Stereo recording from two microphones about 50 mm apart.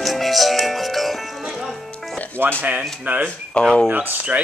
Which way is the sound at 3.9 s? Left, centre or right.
Right.